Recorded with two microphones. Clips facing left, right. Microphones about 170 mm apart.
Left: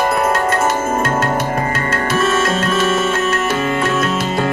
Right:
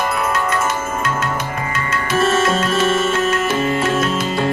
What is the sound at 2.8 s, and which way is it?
Music, 50° left (ahead or behind).